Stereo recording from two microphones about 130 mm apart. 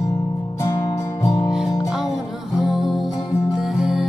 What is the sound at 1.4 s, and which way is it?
Music, 5° right (ahead or behind).